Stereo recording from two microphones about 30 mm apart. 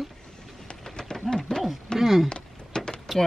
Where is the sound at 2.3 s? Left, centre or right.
Left.